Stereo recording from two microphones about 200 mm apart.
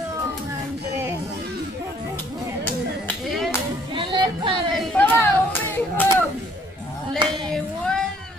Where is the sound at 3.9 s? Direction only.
25° right (ahead or behind).